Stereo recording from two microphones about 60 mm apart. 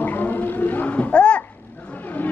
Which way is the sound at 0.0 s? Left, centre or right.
Left.